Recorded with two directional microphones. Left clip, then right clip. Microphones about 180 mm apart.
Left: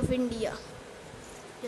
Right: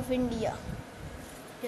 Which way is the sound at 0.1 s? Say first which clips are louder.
Right 5 dB; 10° left (ahead or behind).